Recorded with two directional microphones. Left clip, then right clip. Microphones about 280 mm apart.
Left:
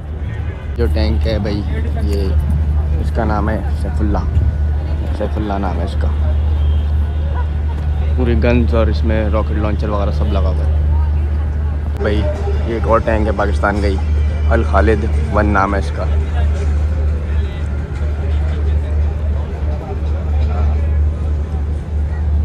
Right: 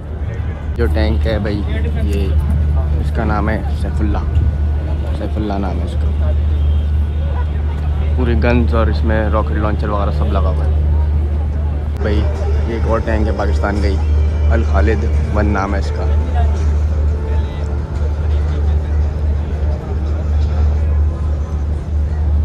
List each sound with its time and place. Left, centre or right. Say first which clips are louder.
0.7 s speech: right 1 dB; centre
3.2 s speech: even; centre
5.4 s speech: right 2 dB; centre
8.2 s speech: left 1 dB; centre
12.0 s speech: left 3 dB; centre